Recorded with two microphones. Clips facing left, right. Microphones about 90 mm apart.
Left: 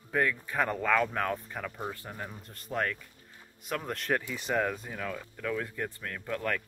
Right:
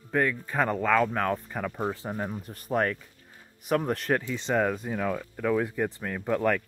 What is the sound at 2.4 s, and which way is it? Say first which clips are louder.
Speech: right 4 dB; 10° right (ahead or behind).